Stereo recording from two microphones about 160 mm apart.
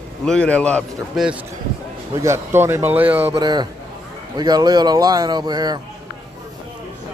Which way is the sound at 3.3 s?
25° right (ahead or behind).